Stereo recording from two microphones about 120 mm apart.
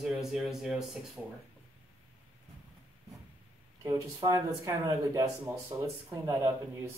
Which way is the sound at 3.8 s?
25° right (ahead or behind).